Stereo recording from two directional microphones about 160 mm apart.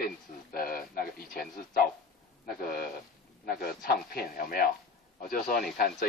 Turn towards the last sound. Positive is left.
turn(degrees=70)  # may be behind; listen again after turning